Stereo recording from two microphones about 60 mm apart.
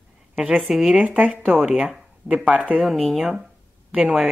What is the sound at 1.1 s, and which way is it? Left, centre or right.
Speech, right.